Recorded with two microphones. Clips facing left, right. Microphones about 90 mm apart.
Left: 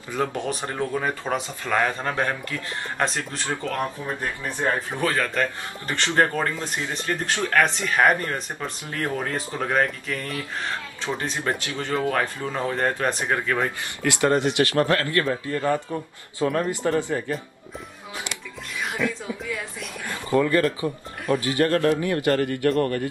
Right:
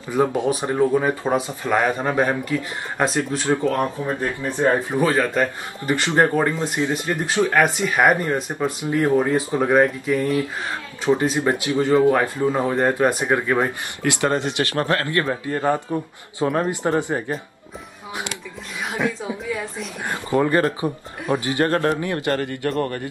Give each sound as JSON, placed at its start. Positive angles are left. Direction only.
{"t": 0.1, "sound": "speech", "side_deg": -15}
{"t": 3.7, "sound": "speech", "side_deg": -20}
{"t": 14.8, "sound": "speech", "side_deg": -25}
{"t": 19.5, "sound": "speech", "side_deg": -20}